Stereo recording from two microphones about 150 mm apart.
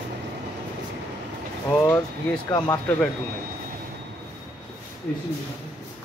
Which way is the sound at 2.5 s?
25° left (ahead or behind).